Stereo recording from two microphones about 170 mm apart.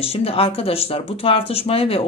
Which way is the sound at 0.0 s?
35° left (ahead or behind).